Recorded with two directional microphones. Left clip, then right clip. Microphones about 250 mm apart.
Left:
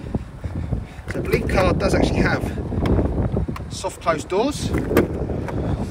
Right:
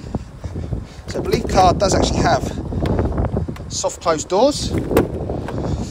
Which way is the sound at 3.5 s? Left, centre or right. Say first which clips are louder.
Right 5 dB; centre.